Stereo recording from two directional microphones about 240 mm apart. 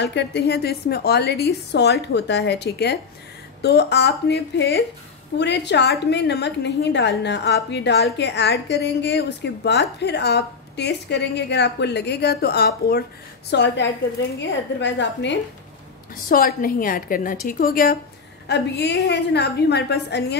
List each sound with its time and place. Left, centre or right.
0.0 s a woman's voice: left
16.3 s a woman's voice: left